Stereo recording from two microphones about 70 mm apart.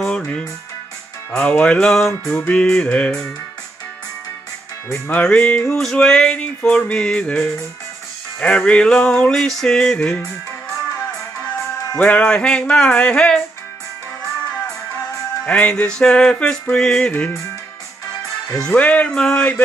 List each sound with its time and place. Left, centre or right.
0.0 s music: centre
2.4 s music: centre
4.9 s music: left
8.6 s music: centre
10.2 s music: left
12.0 s music: left
15.4 s music: left
18.7 s music: left